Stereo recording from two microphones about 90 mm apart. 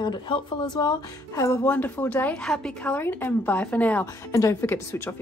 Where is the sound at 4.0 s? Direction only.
35° left (ahead or behind).